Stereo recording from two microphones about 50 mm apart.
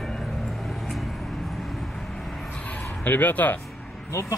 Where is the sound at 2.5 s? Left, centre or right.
Left.